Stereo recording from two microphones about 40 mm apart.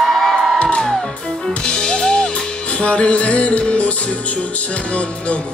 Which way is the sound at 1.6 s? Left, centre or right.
Centre.